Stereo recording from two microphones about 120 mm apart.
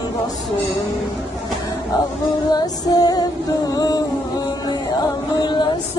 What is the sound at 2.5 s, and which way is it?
Music, 30° left (ahead or behind).